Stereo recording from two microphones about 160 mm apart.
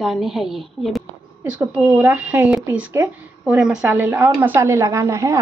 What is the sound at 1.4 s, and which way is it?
Speech, 10° right (ahead or behind).